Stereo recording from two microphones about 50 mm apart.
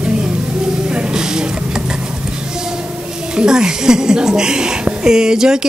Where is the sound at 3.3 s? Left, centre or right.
Centre.